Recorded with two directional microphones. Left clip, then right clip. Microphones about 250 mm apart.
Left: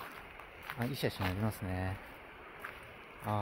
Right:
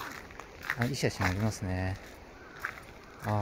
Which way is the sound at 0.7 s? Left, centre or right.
Centre.